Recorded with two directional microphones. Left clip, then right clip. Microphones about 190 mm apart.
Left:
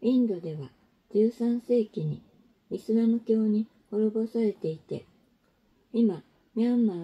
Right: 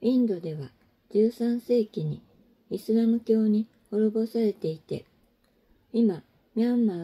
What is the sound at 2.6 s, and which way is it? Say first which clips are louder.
Speech: right 1 dB; 20° right (ahead or behind).